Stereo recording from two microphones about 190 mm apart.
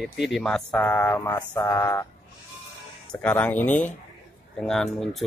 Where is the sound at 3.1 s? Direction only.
5° left (ahead or behind).